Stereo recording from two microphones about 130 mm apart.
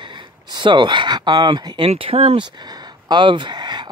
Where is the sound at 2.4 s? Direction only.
35° right (ahead or behind).